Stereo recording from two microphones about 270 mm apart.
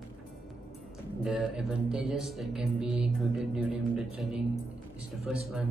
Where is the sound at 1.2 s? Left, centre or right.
Centre.